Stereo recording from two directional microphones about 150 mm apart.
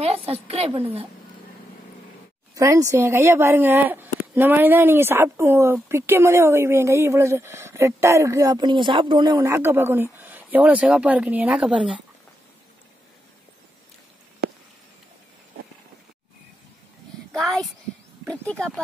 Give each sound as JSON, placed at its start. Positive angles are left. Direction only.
{"t": 0.0, "sound": "a woman's voice", "side_deg": -40}
{"t": 2.5, "sound": "speech", "side_deg": -20}
{"t": 9.4, "sound": "speech", "side_deg": -15}
{"t": 17.3, "sound": "a child's voice", "side_deg": 0}